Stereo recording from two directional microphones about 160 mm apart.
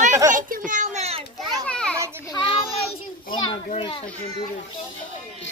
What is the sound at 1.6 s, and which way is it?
Children playing, 5° left (ahead or behind).